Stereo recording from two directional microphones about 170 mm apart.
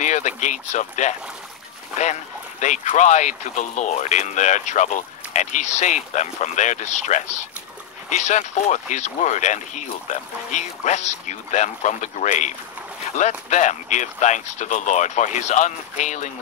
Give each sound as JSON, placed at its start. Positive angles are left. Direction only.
{"t": 0.0, "sound": "speech", "side_deg": 45}
{"t": 2.6, "sound": "speech", "side_deg": 45}